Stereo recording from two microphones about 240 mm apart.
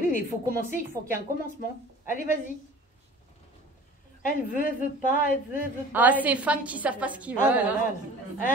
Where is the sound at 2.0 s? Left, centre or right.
Left.